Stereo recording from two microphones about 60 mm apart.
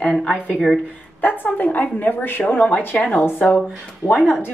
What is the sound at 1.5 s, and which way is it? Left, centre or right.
A woman's voice, left.